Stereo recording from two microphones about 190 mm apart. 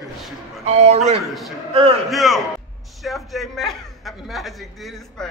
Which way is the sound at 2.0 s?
Centre (ahead or behind).